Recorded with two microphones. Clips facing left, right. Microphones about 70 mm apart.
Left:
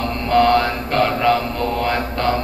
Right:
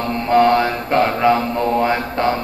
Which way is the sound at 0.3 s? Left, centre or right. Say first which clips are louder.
Right 1 dB; centre.